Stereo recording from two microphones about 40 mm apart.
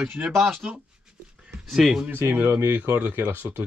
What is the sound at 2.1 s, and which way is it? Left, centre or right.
Speech, right.